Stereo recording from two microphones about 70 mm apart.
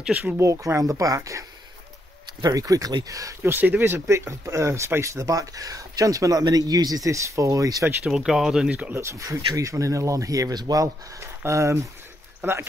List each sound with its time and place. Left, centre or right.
0.4 s speech: right
2.4 s speech: right
3.1 s speech: right
3.4 s speech: right
8.1 s speech: centre
8.6 s speech: centre
8.9 s speech: right
12.4 s speech: right